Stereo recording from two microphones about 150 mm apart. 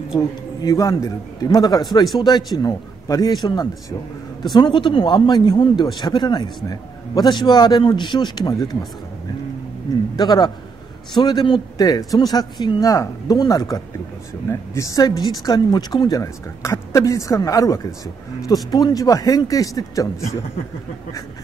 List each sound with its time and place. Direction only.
0.6 s speech: 20° left (ahead or behind)
4.4 s speech: 30° left (ahead or behind)
10.1 s speech: 25° left (ahead or behind)